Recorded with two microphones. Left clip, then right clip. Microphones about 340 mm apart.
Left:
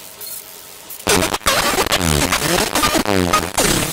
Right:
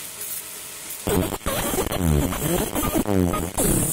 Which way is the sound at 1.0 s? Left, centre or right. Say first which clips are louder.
Left 9 dB; left.